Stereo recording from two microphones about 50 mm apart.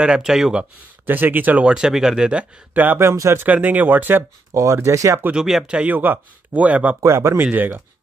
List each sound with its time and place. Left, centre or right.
0.0 s speech: centre
1.0 s speech: right
1.6 s speech: centre
2.7 s speech: right
3.0 s speech: right
3.4 s speech: right
4.6 s speech: right
5.3 s speech: centre
5.9 s speech: right
7.1 s speech: right
7.5 s speech: right